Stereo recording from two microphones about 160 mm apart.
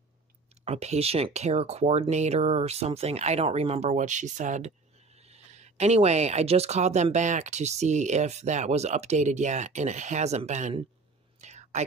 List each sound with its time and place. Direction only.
0.7 s speech: 40° right (ahead or behind)
11.4 s whispering: 45° right (ahead or behind)